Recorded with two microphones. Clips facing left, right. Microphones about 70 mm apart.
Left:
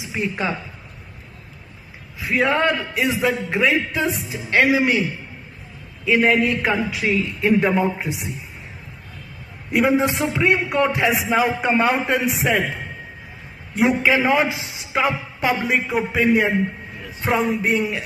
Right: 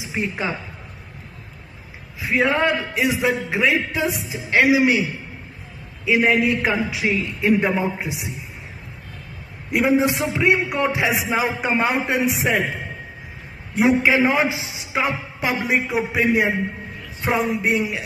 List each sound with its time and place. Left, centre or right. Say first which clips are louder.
0.1 s a man's voice: left 1 dB; centre
2.1 s a man's voice: even; centre
4.1 s a man's voice: even; centre
4.5 s a man's voice: right 1 dB; centre
6.0 s a man's voice: left 1 dB; centre
9.7 s a man's voice: even; centre
13.7 s a man's voice: right 1 dB; right
14.9 s a man's voice: left 2 dB; centre